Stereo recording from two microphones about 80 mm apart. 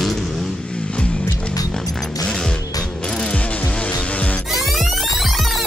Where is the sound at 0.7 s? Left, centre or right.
Centre.